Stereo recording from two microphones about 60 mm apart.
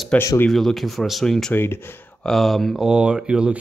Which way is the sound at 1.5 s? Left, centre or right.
Left.